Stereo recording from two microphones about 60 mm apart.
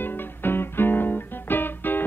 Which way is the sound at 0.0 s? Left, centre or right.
Left.